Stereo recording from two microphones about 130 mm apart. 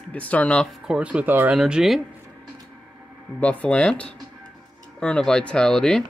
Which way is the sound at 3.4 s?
10° left (ahead or behind).